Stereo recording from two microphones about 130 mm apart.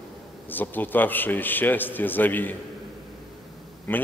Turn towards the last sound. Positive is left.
turn(degrees=15)  # may be behind; listen again after turning